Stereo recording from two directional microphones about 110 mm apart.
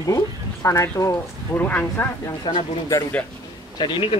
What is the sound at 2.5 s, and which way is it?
Speech, 45° left (ahead or behind).